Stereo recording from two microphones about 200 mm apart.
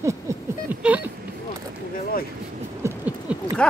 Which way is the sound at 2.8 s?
15° right (ahead or behind).